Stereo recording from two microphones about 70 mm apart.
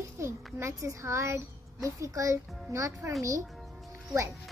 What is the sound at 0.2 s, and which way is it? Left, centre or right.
A child's voice, right.